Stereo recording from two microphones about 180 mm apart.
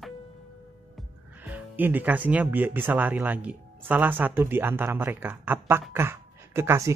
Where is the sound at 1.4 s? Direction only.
10° right (ahead or behind).